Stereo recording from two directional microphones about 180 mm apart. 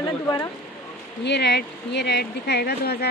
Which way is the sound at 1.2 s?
70° left (ahead or behind).